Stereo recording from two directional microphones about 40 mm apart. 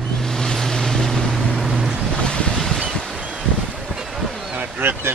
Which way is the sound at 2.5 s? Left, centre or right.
Centre.